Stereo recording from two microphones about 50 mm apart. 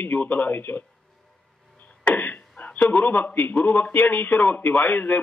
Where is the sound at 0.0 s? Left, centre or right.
Left.